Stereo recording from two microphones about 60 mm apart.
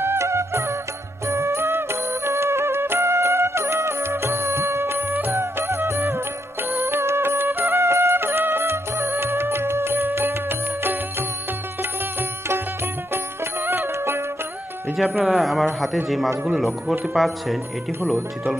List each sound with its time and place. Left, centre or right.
0.0 s music: right
13.7 s music: right
15.1 s a man's voice: centre
17.1 s a man's voice: centre